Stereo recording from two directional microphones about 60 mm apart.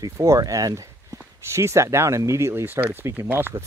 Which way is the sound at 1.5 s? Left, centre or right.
Right.